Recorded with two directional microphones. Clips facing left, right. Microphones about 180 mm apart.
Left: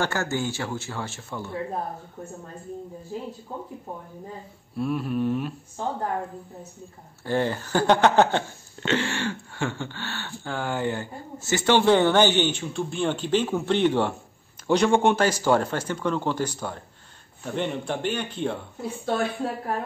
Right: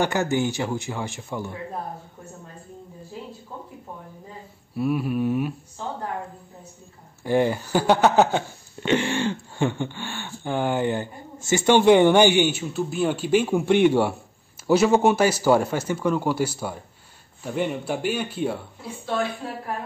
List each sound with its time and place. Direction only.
0.0 s speech: 15° right (ahead or behind)
4.7 s speech: 10° right (ahead or behind)
7.2 s speech: 15° right (ahead or behind)